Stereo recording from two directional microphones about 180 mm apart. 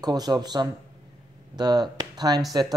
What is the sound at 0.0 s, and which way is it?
Speech, 20° right (ahead or behind).